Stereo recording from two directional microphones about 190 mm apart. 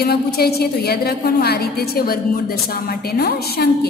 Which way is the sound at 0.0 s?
55° left (ahead or behind).